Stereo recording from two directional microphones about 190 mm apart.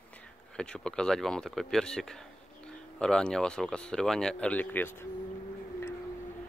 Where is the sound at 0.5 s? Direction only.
5° left (ahead or behind).